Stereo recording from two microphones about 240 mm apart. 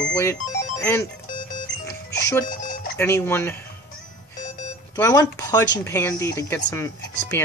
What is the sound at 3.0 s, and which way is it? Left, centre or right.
Speech, centre.